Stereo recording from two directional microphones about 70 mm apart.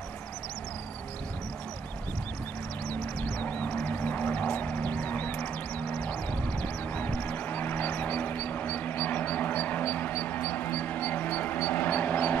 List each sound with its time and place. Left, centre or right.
2.9 s music: left
6.6 s vehicle: left